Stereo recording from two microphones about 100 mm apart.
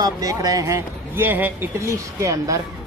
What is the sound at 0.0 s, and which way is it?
Speech, 40° right (ahead or behind).